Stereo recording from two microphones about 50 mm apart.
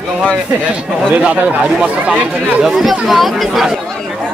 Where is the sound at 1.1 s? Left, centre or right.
Right.